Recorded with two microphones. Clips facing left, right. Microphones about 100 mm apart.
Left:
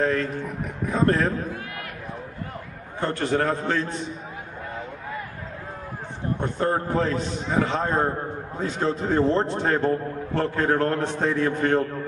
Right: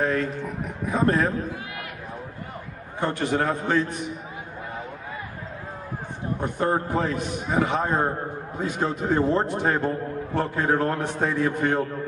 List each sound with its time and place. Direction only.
0.0 s a sound: 15° right (ahead or behind)
0.8 s a man's voice: 15° right (ahead or behind)
3.0 s a man's voice: 15° right (ahead or behind)
6.4 s a man's voice: 15° right (ahead or behind)